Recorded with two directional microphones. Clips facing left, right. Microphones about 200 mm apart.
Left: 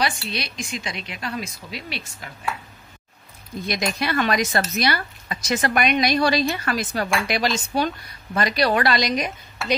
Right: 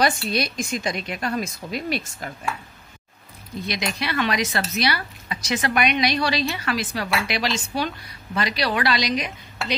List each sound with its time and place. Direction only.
0.0 s a woman's voice: 45° right (ahead or behind)
3.6 s speech: 45° left (ahead or behind)